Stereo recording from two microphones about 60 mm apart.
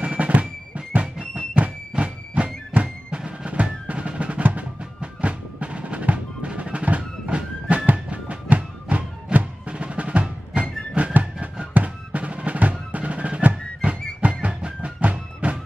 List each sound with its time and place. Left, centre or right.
0.0 s music: right
12.9 s percussion: right
14.4 s music: right